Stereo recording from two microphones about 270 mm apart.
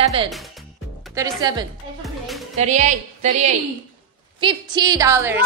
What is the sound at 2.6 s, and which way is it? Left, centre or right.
Speech, right.